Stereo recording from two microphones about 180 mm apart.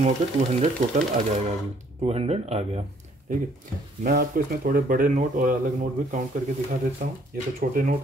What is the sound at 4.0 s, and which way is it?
Speech, 50° right (ahead or behind).